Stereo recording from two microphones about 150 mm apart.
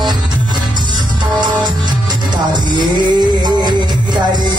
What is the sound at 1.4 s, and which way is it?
Music, 30° right (ahead or behind).